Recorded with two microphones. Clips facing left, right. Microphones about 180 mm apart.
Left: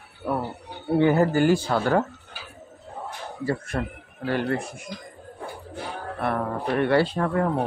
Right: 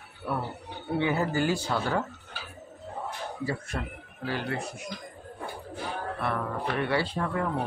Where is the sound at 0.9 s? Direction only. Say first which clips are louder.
Left 8 dB; 50° left (ahead or behind).